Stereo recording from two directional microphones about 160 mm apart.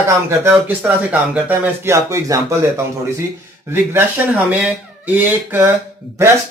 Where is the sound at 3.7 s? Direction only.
10° right (ahead or behind).